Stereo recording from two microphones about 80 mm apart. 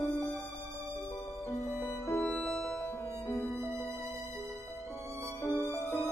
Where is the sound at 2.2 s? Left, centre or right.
Centre.